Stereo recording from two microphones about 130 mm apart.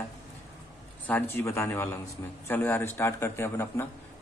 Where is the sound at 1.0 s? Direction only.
15° left (ahead or behind).